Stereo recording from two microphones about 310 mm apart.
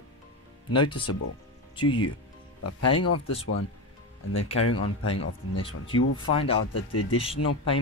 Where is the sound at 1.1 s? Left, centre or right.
Left.